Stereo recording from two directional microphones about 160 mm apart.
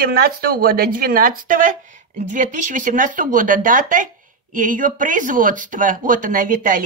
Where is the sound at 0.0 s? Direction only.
70° right (ahead or behind).